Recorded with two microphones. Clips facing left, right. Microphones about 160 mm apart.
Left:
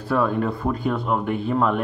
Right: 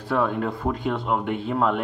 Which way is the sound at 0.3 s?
20° right (ahead or behind).